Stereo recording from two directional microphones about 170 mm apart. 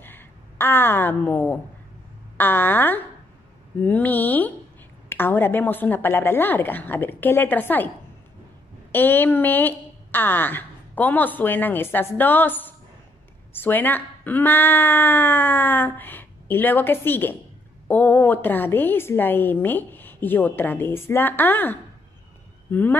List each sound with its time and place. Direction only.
0.0 s a woman's voice: 10° left (ahead or behind)
8.9 s a woman's voice: 10° left (ahead or behind)